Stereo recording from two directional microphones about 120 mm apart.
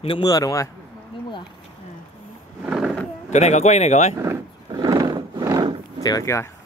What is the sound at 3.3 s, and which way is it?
Speech, 75° left (ahead or behind).